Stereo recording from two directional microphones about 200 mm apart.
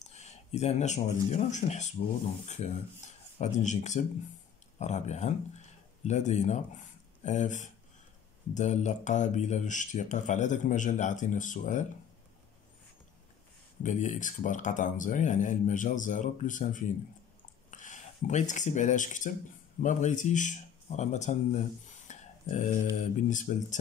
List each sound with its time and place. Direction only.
0.0 s speech: 35° left (ahead or behind)
13.8 s speech: 40° left (ahead or behind)